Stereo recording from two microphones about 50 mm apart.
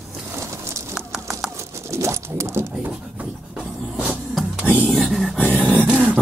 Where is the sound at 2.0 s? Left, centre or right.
Right.